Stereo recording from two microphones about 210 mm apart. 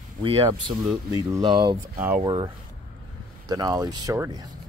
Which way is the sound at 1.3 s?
20° right (ahead or behind).